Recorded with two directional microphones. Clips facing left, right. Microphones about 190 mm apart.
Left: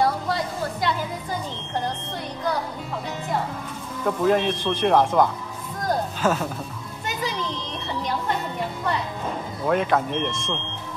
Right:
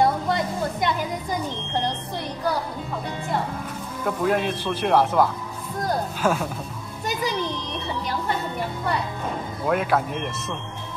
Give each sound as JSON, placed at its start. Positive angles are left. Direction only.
{"t": 0.0, "sound": "a sound", "side_deg": -20}
{"t": 4.0, "sound": "speech", "side_deg": -5}
{"t": 9.7, "sound": "speech", "side_deg": -5}